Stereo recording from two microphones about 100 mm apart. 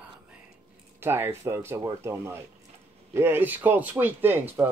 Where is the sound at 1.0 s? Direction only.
25° right (ahead or behind).